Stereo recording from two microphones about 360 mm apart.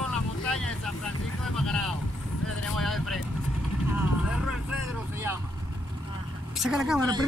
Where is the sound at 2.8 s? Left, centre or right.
Centre.